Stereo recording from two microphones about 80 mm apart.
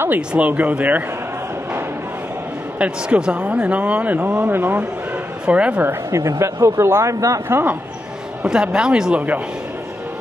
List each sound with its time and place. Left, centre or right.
0.3 s speech: centre
2.8 s a man's voice: centre
5.5 s a man's voice: centre
5.9 s speech: right
7.4 s speech: right
8.5 s a man's voice: centre